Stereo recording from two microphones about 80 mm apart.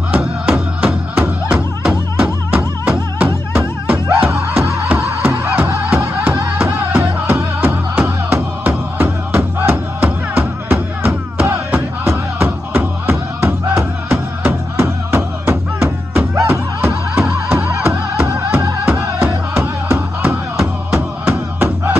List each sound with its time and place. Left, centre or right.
0.1 s music: centre
2.2 s music: right
14.8 s music: right